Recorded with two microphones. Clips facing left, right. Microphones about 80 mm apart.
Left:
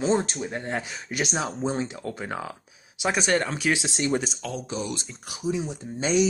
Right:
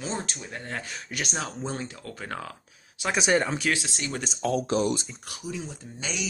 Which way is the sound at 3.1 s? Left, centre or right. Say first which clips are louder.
Right 2 dB; centre.